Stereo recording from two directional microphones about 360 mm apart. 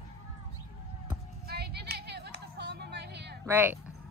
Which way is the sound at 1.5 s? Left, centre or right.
Right.